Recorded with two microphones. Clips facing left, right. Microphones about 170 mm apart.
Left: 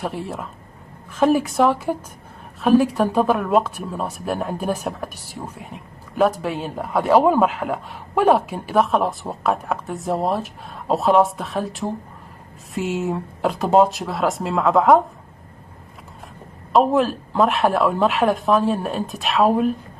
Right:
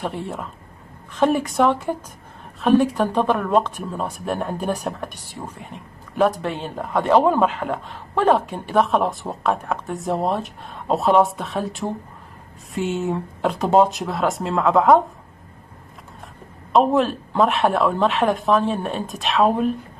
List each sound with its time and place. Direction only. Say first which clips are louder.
0.0 s speech: even; centre (ahead or behind)
16.7 s speech: even; centre (ahead or behind)